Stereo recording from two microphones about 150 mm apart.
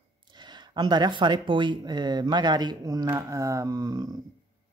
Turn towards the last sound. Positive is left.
turn(degrees=-25)  # may be behind; listen again after turning